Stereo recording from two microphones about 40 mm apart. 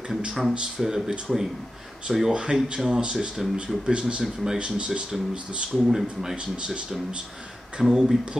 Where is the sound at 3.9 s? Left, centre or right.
Right.